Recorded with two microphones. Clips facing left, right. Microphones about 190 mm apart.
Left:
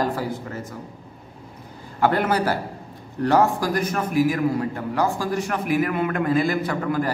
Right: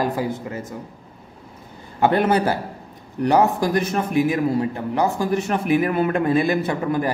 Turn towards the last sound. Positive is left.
turn(degrees=-20)  # may be behind; listen again after turning